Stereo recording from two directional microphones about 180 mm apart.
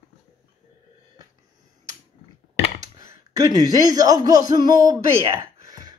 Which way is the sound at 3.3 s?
20° right (ahead or behind).